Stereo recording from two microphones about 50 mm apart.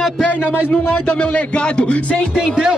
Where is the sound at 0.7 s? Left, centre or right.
Centre.